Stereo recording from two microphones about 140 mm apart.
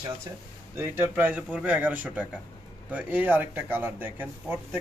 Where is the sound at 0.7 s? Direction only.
15° right (ahead or behind).